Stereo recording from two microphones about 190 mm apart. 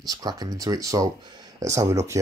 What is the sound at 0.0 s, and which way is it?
Speech, 20° right (ahead or behind).